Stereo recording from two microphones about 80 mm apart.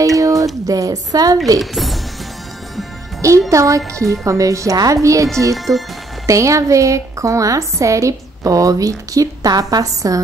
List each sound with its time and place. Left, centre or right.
0.0 s a sound: right
0.7 s a woman's voice: right
1.6 s speech: centre
3.2 s a woman's voice: right